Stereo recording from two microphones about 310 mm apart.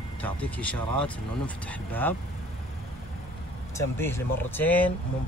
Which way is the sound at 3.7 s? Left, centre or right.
Centre.